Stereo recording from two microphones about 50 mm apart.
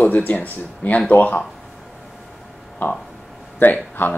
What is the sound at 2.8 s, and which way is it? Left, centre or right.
Speech, left.